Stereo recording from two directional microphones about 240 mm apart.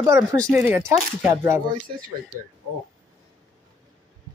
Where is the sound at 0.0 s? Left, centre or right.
Centre.